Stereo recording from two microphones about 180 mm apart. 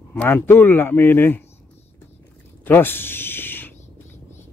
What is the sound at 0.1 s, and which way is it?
Speech, 10° left (ahead or behind).